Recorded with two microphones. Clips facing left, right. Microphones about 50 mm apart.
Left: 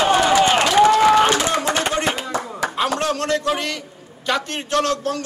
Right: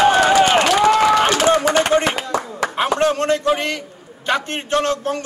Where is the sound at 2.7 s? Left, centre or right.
Right.